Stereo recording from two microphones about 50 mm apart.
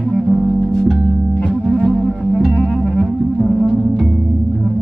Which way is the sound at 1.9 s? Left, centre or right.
Left.